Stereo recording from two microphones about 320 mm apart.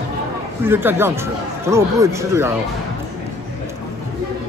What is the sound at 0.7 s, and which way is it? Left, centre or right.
Speech, centre.